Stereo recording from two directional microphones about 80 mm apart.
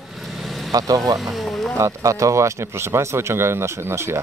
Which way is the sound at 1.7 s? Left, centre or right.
Right.